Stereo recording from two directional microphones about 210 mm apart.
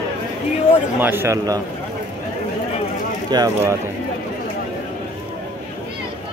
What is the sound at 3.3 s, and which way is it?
Speech, 20° right (ahead or behind).